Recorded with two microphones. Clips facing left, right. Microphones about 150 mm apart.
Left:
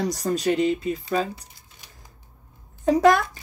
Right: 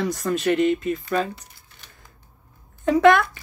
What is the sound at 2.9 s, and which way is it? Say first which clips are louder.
Speech: right 3 dB; 40° left (ahead or behind).